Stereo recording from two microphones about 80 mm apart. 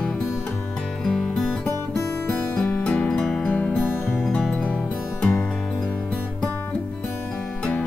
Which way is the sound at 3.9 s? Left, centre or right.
Left.